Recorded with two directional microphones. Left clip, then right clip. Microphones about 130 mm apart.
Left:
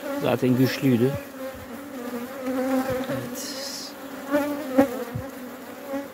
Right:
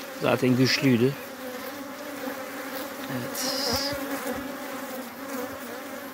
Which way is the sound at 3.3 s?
40° left (ahead or behind).